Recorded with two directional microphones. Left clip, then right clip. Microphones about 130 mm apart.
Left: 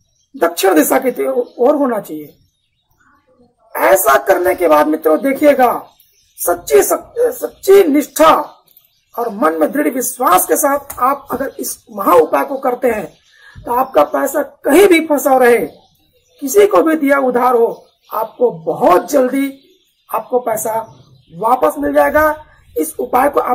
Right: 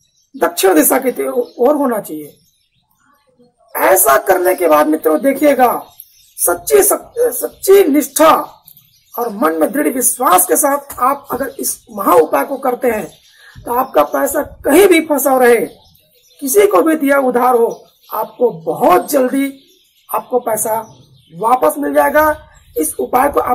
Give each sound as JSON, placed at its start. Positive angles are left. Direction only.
{"t": 0.4, "sound": "speech", "side_deg": 0}
{"t": 3.7, "sound": "speech", "side_deg": -5}
{"t": 21.4, "sound": "a man's voice", "side_deg": -15}
{"t": 21.6, "sound": "speech", "side_deg": 0}